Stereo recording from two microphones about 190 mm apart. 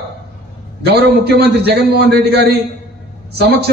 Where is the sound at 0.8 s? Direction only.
60° right (ahead or behind).